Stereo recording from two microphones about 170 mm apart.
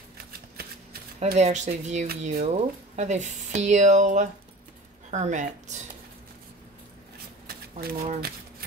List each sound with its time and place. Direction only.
1.2 s speech: 40° right (ahead or behind)
7.4 s shuffling cards: 65° right (ahead or behind)